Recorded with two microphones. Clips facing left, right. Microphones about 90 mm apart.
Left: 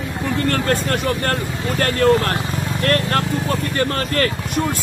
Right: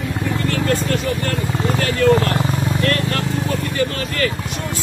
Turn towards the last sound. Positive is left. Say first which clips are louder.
# left 1 dB
turn(degrees=45)  # may be behind; listen again after turning